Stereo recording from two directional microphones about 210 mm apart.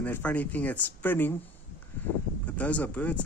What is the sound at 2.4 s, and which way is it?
Speech, 5° left (ahead or behind).